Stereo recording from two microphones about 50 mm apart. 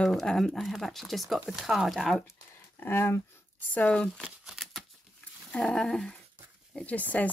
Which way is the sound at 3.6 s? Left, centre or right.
Left.